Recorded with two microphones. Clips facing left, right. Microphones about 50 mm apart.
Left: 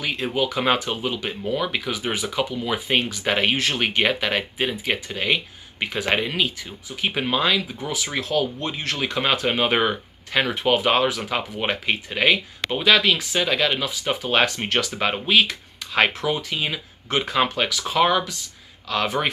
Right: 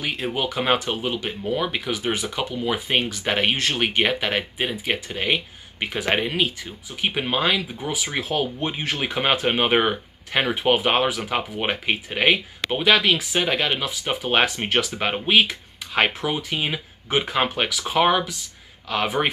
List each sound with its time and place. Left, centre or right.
0.0 s speech: centre
0.8 s speech: centre
1.8 s speech: centre